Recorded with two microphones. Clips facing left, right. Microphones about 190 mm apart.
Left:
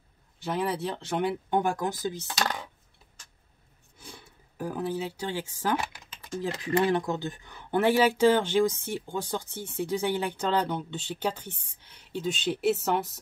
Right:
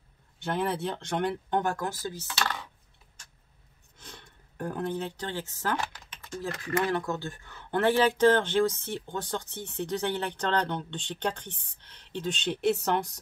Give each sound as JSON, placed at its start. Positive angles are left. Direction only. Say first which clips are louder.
{"t": 0.4, "sound": "speech", "louder": "even", "side_deg": 0}
{"t": 4.0, "sound": "a sound", "louder": "left 2 dB", "side_deg": 10}
{"t": 6.5, "sound": "speech", "louder": "left 3 dB", "side_deg": 30}
{"t": 6.9, "sound": "speech", "louder": "left 3 dB", "side_deg": 15}